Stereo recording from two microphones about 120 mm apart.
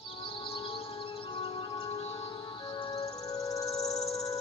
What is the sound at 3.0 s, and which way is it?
Music, 30° left (ahead or behind).